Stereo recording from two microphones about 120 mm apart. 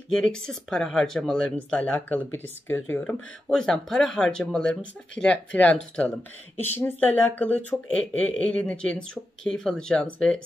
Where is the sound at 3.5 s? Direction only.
5° left (ahead or behind).